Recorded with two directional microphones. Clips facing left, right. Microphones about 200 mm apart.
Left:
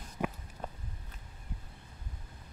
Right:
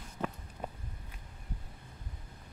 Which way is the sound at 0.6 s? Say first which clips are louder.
Right 1 dB; 10° right (ahead or behind).